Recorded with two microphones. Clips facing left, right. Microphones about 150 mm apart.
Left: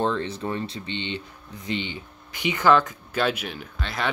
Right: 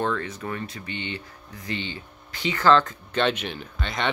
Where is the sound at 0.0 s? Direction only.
30° left (ahead or behind).